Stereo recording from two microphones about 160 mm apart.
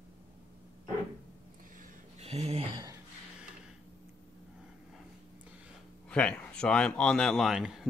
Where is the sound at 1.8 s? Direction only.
45° right (ahead or behind).